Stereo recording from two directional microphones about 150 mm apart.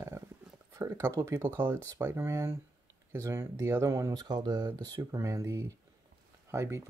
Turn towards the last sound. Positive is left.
turn(degrees=-20)  # may be behind; listen again after turning